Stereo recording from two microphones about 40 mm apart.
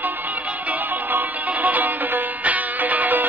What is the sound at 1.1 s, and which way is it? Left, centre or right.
Music, right.